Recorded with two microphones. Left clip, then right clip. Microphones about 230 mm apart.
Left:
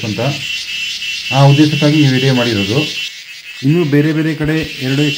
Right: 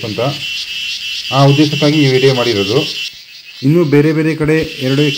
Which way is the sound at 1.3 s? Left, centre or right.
Right.